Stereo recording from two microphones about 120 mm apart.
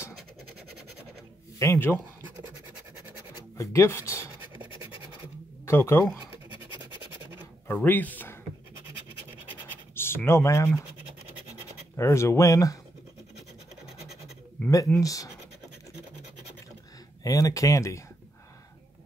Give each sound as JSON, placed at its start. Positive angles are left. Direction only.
{"t": 1.6, "sound": "speech", "side_deg": 20}
{"t": 3.5, "sound": "speech", "side_deg": 25}
{"t": 5.7, "sound": "speech", "side_deg": 20}
{"t": 7.6, "sound": "speech", "side_deg": 15}
{"t": 9.9, "sound": "speech", "side_deg": 20}
{"t": 12.0, "sound": "speech", "side_deg": 25}
{"t": 15.0, "sound": "speech", "side_deg": 30}
{"t": 17.2, "sound": "speech", "side_deg": 25}